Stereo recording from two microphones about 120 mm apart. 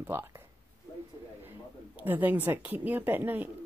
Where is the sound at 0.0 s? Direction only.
15° right (ahead or behind).